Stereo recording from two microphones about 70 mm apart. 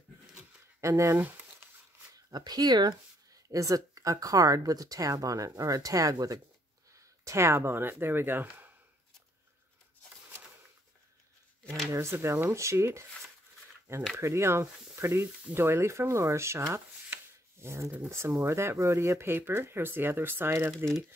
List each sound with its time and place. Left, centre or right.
0.7 s speech: right
1.1 s a sound: right
2.1 s speech: right
3.4 s speech: right
7.2 s speech: right
11.9 s speech: right
14.1 s speech: right
16.7 s rub: right
18.1 s speech: right